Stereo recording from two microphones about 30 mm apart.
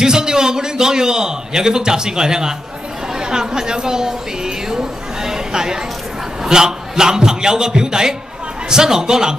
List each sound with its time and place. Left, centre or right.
0.0 s a man's voice: right
4.6 s a sound: right
6.4 s a man's voice: right